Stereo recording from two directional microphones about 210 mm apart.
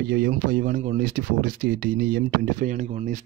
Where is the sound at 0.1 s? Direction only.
45° right (ahead or behind).